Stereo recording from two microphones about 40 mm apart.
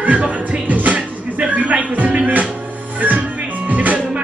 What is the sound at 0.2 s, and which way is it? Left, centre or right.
Music, right.